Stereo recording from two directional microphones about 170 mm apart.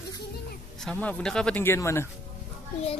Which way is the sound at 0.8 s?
10° left (ahead or behind).